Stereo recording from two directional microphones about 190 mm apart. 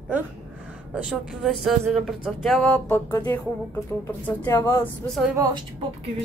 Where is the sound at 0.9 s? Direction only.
5° right (ahead or behind).